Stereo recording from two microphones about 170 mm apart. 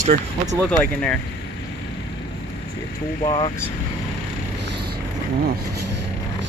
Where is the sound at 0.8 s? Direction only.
5° left (ahead or behind).